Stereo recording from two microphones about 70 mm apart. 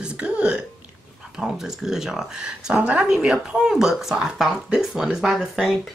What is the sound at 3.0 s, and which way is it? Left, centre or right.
Speech, centre.